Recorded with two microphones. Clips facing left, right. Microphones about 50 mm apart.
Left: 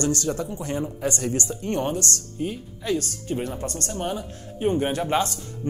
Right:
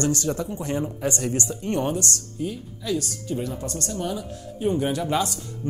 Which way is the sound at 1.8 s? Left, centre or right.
Left.